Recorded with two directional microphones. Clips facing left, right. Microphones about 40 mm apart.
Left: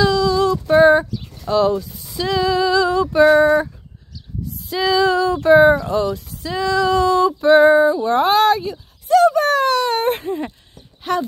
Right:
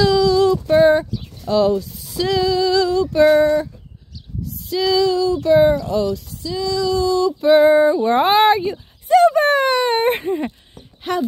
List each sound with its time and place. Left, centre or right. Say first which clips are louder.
0.0 s female singing: right 2 dB; centre
1.5 s speech: even; centre
2.4 s female singing: left 2 dB; left
2.9 s a sound: even; left
3.2 s speech: left 1 dB; centre
3.4 s a sound: left 2 dB; left
4.6 s female singing: even; left
5.0 s female singing: left 1 dB; left
5.5 s speech: left 3 dB; centre
6.4 s female singing: left 3 dB; left
7.3 s music: even; centre
7.8 s a sound: right 1 dB; centre
11.1 s speech: left 1 dB; centre